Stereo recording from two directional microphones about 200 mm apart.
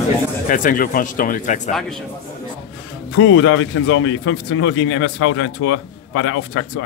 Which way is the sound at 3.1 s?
75° left (ahead or behind).